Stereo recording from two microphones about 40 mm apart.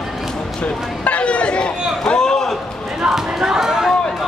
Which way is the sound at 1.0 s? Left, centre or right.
Left.